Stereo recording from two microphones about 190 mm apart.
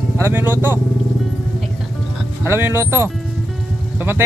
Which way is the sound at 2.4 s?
10° right (ahead or behind).